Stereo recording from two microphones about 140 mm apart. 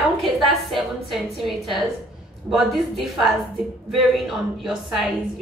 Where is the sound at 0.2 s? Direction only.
Centre (ahead or behind).